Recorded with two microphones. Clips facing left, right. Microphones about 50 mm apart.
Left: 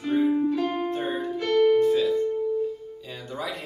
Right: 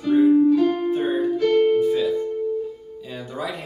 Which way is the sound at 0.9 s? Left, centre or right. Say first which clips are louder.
Right 7 dB; centre.